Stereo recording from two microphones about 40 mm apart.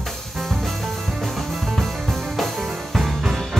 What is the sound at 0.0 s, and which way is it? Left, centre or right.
Music, centre.